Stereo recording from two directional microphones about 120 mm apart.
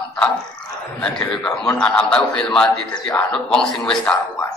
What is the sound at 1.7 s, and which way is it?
A man's voice, 10° left (ahead or behind).